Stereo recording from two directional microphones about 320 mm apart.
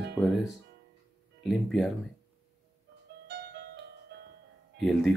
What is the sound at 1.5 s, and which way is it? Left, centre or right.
Speech, centre.